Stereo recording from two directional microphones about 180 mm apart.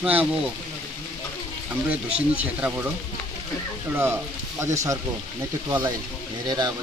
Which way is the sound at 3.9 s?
15° right (ahead or behind).